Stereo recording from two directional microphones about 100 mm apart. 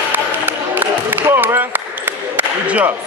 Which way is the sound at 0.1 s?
20° right (ahead or behind).